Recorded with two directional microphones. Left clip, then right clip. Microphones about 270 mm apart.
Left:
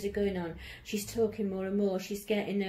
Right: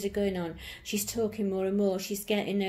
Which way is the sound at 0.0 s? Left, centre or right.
Right.